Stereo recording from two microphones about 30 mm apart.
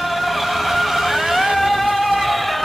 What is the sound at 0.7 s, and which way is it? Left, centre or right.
Music, centre.